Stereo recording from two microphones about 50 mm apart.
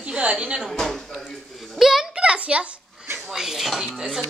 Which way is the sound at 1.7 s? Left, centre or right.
Centre.